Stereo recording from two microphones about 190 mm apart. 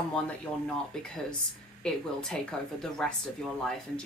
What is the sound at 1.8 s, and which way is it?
A woman's voice, 5° left (ahead or behind).